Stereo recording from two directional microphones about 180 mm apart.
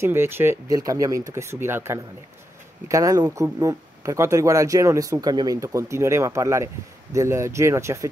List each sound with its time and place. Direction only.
0.0 s speech: 15° right (ahead or behind)